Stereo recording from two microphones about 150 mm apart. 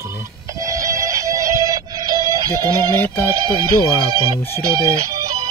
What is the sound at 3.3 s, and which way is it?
Speech, 30° right (ahead or behind).